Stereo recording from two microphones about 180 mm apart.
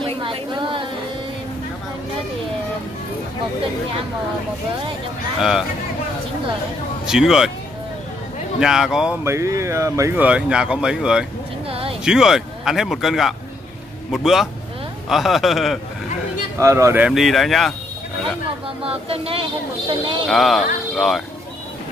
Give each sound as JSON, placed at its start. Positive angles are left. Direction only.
{"t": 0.0, "sound": "a sound", "side_deg": -30}
{"t": 5.4, "sound": "speech", "side_deg": 0}
{"t": 7.1, "sound": "speech", "side_deg": -5}
{"t": 8.5, "sound": "speech", "side_deg": -5}
{"t": 9.2, "sound": "speech", "side_deg": -15}
{"t": 16.5, "sound": "speech", "side_deg": -15}
{"t": 18.8, "sound": "speech", "side_deg": -30}
{"t": 20.2, "sound": "speech", "side_deg": 0}